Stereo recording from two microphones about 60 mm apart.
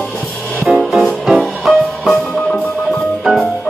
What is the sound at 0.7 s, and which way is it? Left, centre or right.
Music, centre.